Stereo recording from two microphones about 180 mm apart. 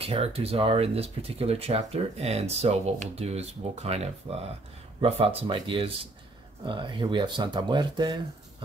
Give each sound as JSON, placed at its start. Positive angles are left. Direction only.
{"t": 0.0, "sound": "speech", "side_deg": -30}